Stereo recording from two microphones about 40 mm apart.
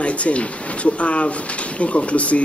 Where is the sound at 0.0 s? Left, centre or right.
Left.